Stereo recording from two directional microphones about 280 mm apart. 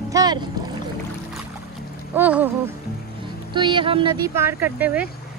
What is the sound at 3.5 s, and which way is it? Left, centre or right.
Speech, centre.